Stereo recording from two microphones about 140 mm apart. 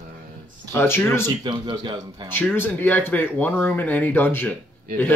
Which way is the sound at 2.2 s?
15° left (ahead or behind).